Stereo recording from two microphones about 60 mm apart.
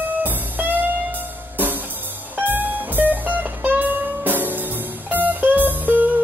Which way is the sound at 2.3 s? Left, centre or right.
Right.